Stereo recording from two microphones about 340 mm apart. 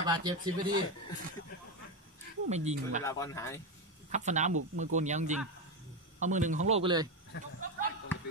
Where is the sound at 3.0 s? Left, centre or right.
Centre.